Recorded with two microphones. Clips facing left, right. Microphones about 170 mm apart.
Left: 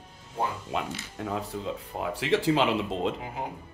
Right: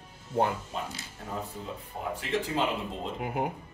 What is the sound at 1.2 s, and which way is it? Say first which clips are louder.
Speech: left 6 dB; 80° left.